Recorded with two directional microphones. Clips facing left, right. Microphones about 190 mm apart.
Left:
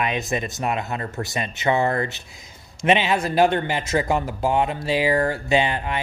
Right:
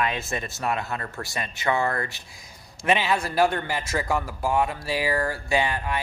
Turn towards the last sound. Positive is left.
turn(degrees=20)  # may be behind; listen again after turning